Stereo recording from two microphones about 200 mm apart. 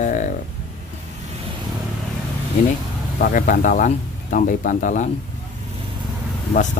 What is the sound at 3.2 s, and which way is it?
Speech, 40° left (ahead or behind).